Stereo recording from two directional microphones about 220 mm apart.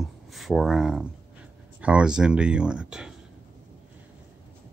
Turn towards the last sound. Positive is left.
turn(degrees=-5)  # may be behind; listen again after turning